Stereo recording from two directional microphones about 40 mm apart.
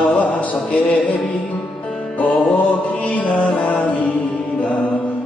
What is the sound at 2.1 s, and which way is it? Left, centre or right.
Music, left.